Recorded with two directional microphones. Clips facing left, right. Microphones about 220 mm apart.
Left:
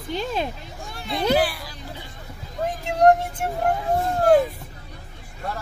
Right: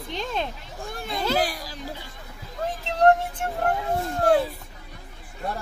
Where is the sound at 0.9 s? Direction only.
50° right (ahead or behind).